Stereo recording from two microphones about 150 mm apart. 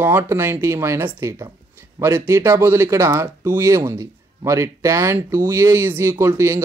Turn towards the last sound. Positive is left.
turn(degrees=-15)  # may be behind; listen again after turning